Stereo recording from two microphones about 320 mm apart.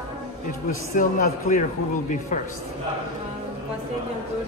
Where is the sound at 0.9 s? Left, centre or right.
Left.